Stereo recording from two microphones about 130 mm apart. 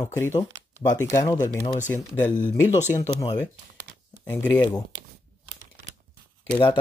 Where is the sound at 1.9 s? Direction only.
15° left (ahead or behind).